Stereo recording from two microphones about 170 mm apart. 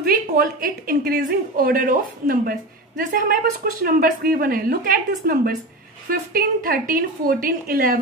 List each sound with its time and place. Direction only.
0.6 s speech: 60° right (ahead or behind)